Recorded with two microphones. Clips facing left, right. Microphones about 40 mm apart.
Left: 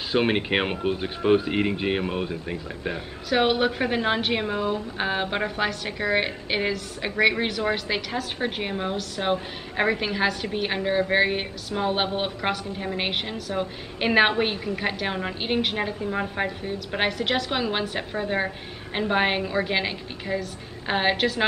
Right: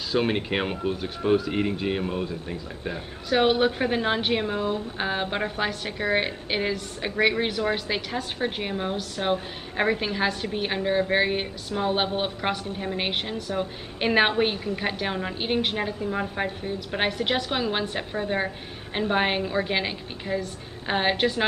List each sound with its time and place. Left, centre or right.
0.1 s speech: left
3.3 s a woman's voice: centre
4.5 s speech: left
4.9 s a woman's voice: centre